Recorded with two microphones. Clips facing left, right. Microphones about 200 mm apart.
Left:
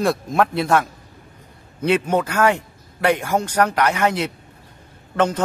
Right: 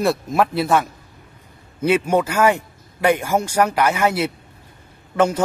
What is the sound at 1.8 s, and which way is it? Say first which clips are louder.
A man's voice: right 1 dB; 10° right (ahead or behind).